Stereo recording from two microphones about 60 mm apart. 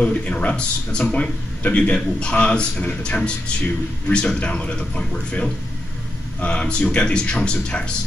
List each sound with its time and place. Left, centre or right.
0.0 s a man's voice: left